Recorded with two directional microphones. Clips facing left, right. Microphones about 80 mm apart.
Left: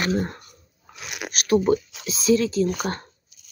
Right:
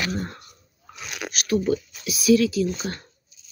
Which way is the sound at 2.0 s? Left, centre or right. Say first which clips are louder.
Right 4 dB; left.